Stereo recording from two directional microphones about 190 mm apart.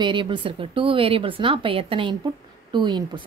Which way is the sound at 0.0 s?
25° right (ahead or behind).